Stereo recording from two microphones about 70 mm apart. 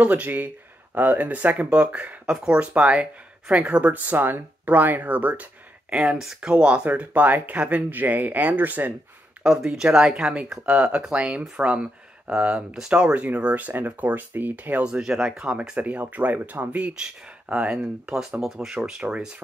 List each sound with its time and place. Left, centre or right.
0.0 s speech: right
9.4 s speech: centre; by 14.9 s right
14.9 s speech: centre